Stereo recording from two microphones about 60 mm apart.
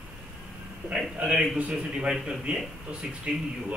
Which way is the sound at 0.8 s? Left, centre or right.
Centre.